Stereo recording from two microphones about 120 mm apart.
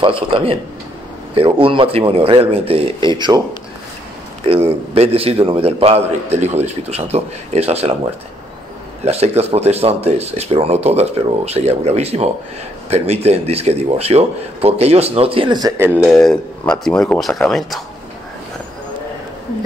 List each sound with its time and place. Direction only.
0.0 s speech: 45° right (ahead or behind)
4.5 s a man's voice: 50° right (ahead or behind)
9.0 s a man's voice: 60° right (ahead or behind)
16.0 s speech: centre (ahead or behind)